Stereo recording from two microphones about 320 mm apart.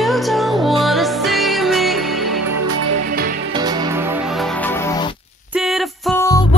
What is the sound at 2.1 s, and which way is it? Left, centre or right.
Music, right.